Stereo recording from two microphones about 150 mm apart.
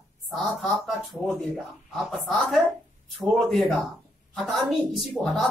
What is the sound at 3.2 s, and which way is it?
A woman's voice, centre (ahead or behind).